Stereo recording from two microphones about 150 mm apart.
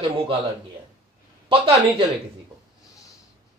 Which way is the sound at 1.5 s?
35° right (ahead or behind).